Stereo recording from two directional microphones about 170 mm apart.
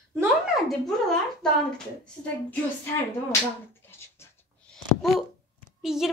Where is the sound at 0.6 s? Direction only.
Centre (ahead or behind).